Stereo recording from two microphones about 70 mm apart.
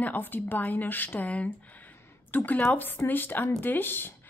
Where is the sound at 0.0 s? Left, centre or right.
Left.